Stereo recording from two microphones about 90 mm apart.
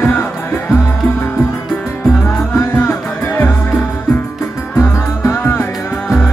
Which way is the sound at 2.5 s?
25° left (ahead or behind).